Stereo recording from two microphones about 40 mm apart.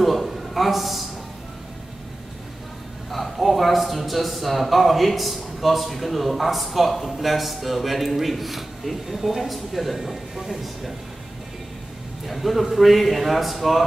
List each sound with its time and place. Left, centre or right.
0.0 s a sound: centre
3.1 s speech: centre
12.3 s speech: centre